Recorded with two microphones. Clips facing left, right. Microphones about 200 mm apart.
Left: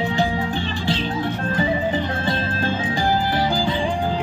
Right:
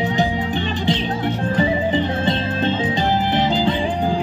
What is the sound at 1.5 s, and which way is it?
Music, 20° right (ahead or behind).